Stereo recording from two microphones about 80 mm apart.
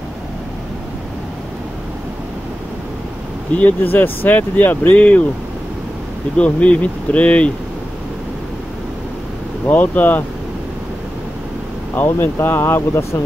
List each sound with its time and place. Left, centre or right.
3.5 s speech: left
6.3 s speech: centre
9.7 s speech: left
11.9 s speech: left